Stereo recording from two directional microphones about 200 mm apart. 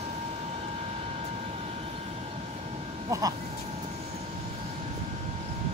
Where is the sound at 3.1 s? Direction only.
15° right (ahead or behind).